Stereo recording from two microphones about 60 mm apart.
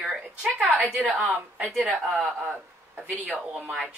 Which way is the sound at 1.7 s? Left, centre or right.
Right.